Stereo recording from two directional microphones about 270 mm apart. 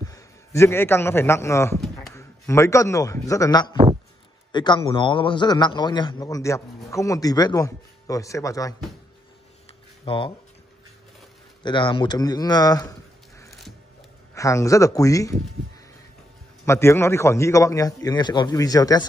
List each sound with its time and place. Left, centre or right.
0.0 s a man's voice: centre
9.7 s a sound: centre
11.6 s a man's voice: centre
13.5 s a sound: centre
14.3 s a man's voice: centre
16.6 s a man's voice: centre